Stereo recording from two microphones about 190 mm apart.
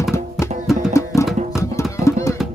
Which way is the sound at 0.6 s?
Centre (ahead or behind).